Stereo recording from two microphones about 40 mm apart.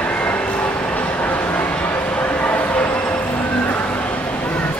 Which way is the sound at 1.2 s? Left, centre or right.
Left.